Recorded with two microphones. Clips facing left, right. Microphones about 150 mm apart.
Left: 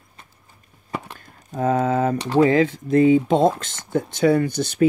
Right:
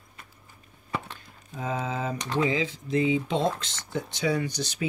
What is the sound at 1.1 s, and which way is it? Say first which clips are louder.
Speech: left 9 dB; 45° left (ahead or behind).